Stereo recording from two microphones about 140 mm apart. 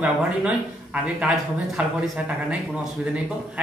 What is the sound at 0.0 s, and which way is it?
Speech, 10° right (ahead or behind).